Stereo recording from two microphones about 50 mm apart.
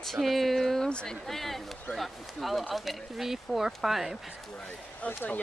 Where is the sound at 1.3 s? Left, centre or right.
Centre.